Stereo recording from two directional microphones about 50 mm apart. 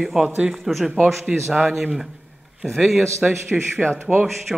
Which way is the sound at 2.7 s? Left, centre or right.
Centre.